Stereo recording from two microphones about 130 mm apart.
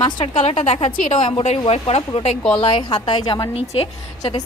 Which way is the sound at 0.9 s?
75° left (ahead or behind).